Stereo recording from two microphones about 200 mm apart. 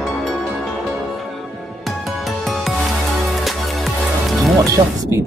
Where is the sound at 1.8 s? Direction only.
Centre (ahead or behind).